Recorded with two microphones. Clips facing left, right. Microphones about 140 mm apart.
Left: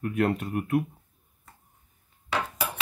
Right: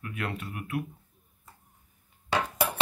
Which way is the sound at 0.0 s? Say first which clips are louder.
Left 10 dB; 45° left (ahead or behind).